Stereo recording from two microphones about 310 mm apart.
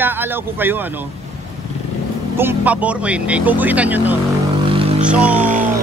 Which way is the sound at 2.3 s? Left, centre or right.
Centre.